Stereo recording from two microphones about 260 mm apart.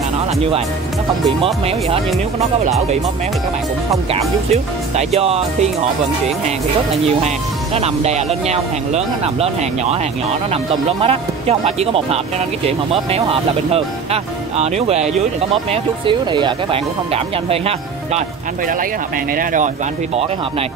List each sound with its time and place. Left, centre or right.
1.4 s speech: right
3.9 s speech: right
19.3 s speech: right